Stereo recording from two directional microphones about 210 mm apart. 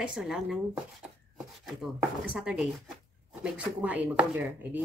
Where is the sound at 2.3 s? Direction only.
5° right (ahead or behind).